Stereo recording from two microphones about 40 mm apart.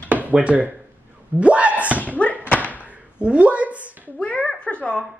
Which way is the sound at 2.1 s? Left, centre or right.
Left.